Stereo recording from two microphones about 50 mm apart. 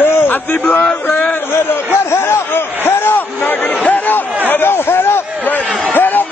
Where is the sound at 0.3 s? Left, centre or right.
Left.